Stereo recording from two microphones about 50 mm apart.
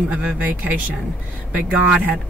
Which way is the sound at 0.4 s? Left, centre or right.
Right.